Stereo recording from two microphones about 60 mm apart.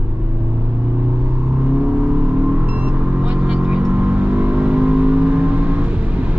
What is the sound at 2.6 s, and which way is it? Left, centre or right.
Vehicle, right.